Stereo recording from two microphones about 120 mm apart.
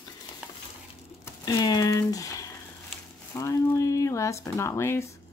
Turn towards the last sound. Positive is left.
turn(degrees=20)  # may be behind; listen again after turning